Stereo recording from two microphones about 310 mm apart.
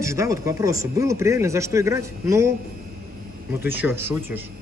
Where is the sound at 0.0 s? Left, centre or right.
Centre.